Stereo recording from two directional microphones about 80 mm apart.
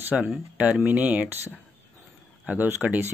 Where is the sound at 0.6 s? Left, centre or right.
Centre.